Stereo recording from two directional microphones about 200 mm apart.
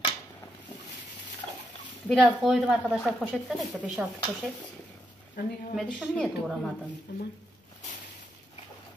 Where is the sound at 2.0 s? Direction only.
Centre (ahead or behind).